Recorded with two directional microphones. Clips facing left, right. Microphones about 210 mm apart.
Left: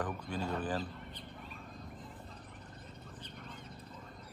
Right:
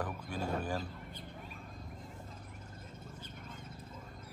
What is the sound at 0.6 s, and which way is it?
Fowl, 10° right (ahead or behind).